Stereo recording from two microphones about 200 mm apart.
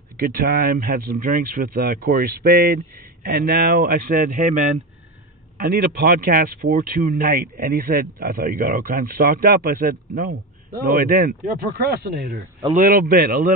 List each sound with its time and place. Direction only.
0.3 s speech: 45° right (ahead or behind)